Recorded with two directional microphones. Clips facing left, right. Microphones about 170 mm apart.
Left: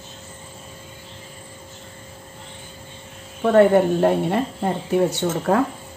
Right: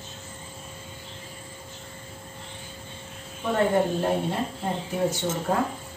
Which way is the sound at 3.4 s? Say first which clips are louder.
Left 8 dB; 65° left (ahead or behind).